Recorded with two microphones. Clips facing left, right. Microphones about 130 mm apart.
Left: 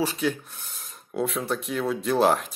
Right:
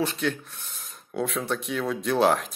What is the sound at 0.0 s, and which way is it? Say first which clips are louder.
Speech: left 1 dB; 5° left (ahead or behind).